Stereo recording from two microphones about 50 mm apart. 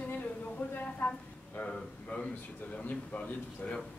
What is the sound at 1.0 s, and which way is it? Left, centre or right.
Speech, left.